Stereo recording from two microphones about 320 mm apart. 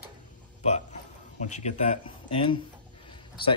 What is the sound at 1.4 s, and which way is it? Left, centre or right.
Speech, left.